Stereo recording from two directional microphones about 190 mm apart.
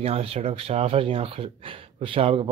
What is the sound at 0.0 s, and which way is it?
Speech, 30° right (ahead or behind).